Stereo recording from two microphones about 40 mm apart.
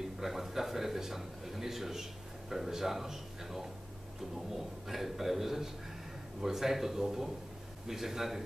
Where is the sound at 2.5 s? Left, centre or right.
Centre.